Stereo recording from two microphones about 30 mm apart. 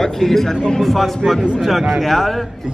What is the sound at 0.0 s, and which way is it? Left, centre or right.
A man's voice, centre.